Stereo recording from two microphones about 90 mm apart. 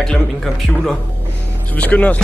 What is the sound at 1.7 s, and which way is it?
Speech, 15° left (ahead or behind).